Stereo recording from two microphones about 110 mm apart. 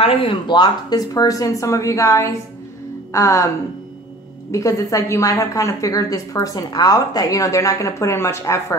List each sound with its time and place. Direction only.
0.0 s a woman's voice: 55° left (ahead or behind); by 3.4 s 25° left (ahead or behind)
4.5 s a woman's voice: 30° left (ahead or behind)